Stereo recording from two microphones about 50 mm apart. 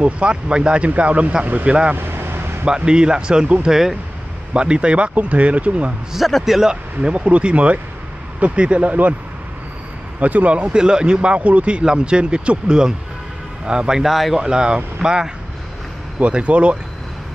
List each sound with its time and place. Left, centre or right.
0.0 s speech: right
1.7 s speech: right
2.0 s vehicle: right
2.6 s speech: centre
4.6 s speech: right
6.1 s a man's voice: centre
6.7 s speech: right
10.2 s speech: right
10.7 s speech: centre
14.4 s speech: centre
16.2 s speech: right